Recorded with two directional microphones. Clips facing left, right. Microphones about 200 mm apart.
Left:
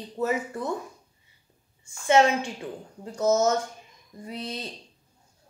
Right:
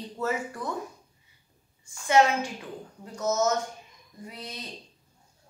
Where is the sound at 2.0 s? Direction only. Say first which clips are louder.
Left 2 dB; 25° left (ahead or behind).